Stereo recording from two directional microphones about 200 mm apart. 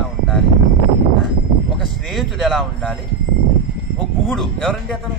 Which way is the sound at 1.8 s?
Centre (ahead or behind).